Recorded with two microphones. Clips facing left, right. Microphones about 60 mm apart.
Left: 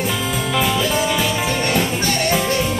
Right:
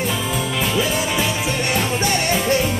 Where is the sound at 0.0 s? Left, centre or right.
Centre.